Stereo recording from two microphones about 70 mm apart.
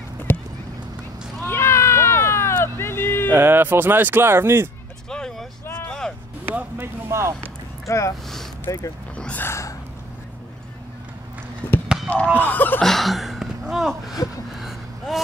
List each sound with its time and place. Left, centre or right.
0.3 s a sound: left
3.3 s speech: right
5.1 s vehicle: centre
5.9 s a sound: centre
6.4 s speech: right
7.8 s speech: left
9.1 s speech: centre
9.4 s speech: left
11.6 s speech: left
12.8 s speech: centre
14.5 s a sound: centre